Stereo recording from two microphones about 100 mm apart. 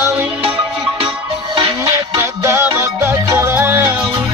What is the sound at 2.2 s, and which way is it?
Music, 25° right (ahead or behind).